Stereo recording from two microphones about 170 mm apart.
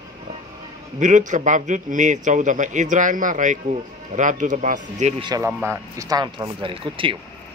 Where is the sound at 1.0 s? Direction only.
45° right (ahead or behind).